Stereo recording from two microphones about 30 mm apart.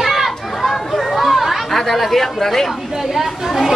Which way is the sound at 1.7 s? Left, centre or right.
Centre.